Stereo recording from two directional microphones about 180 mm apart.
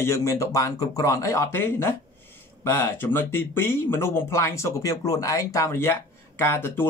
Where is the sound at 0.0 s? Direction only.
15° left (ahead or behind).